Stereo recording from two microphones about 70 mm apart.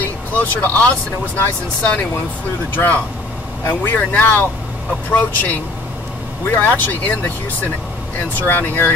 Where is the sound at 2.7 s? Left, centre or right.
Left.